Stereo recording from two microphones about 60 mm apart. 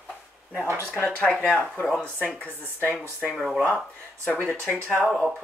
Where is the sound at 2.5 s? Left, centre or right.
Right.